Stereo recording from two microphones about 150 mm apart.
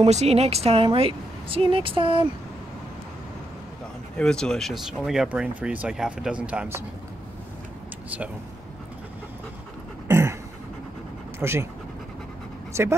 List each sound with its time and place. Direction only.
0.0 s a woman's voice: 45° right (ahead or behind)
4.2 s speech: 5° left (ahead or behind)
10.0 s a sound: 15° right (ahead or behind)
11.3 s speech: 15° right (ahead or behind)
12.7 s speech: 20° right (ahead or behind)